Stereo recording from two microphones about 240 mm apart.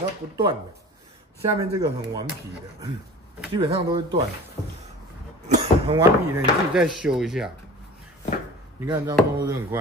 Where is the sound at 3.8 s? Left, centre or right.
Centre.